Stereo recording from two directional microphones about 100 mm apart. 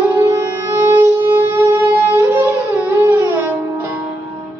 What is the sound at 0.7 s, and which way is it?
Music, 20° right (ahead or behind).